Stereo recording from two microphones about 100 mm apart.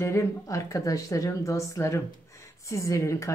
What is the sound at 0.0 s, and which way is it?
A woman's voice, 30° left (ahead or behind).